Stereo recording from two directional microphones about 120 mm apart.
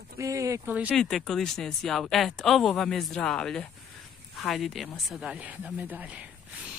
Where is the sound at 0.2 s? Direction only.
25° right (ahead or behind).